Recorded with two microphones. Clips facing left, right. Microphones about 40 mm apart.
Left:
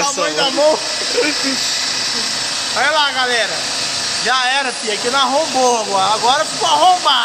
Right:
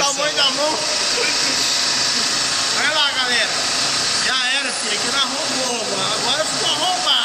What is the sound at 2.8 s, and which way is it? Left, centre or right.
Speech, centre.